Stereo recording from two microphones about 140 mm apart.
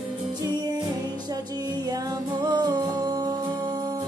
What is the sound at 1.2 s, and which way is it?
Music, 30° right (ahead or behind).